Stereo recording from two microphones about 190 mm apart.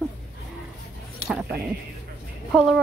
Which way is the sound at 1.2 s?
5° right (ahead or behind).